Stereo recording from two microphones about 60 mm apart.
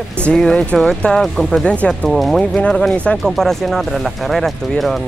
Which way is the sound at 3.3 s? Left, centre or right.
Centre.